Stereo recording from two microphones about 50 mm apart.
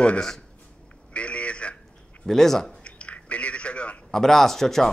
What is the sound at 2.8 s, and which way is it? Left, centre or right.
Chewing, left.